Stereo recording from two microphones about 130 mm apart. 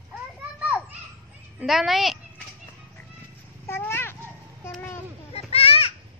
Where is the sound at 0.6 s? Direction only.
10° right (ahead or behind).